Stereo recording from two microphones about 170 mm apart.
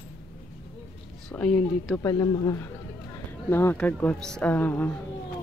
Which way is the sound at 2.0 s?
25° left (ahead or behind).